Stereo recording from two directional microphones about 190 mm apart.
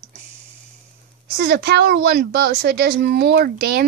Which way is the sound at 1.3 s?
55° right (ahead or behind).